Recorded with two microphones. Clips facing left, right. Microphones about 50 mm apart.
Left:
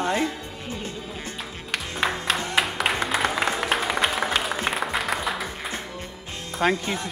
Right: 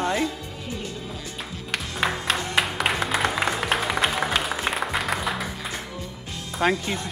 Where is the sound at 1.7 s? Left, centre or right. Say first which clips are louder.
Even; centre.